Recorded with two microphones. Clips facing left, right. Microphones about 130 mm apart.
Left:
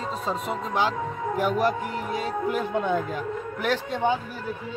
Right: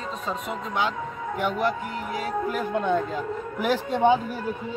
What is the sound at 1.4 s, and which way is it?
Speech, 40° left (ahead or behind).